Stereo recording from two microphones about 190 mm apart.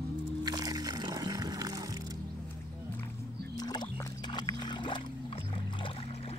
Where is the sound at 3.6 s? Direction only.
20° left (ahead or behind).